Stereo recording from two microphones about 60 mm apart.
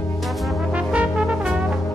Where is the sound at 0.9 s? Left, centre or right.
Centre.